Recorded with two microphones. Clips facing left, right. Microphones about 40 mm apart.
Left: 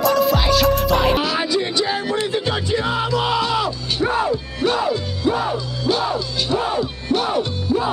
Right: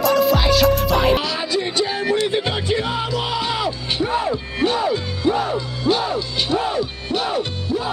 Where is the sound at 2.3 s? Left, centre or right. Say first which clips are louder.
Even; right.